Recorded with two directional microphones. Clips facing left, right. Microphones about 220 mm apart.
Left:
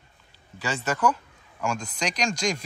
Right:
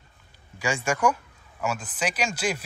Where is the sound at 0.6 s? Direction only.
10° right (ahead or behind).